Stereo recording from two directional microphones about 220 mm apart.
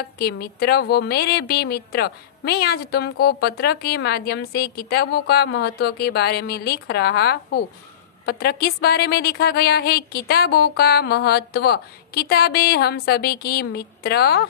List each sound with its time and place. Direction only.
0.0 s a woman's voice: 45° left (ahead or behind)